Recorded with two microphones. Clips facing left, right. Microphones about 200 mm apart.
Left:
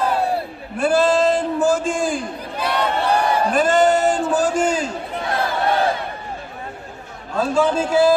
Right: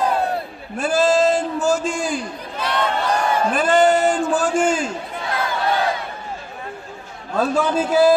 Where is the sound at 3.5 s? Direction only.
45° left (ahead or behind).